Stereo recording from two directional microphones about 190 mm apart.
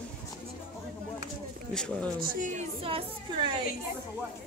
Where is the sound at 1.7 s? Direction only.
5° left (ahead or behind).